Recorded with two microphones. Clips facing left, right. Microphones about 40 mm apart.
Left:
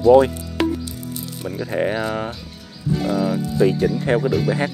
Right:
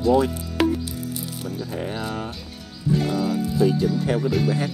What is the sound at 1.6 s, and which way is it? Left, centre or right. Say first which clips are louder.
Speech: left 10 dB; left.